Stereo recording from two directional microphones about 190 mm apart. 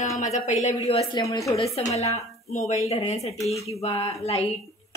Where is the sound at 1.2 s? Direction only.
15° left (ahead or behind).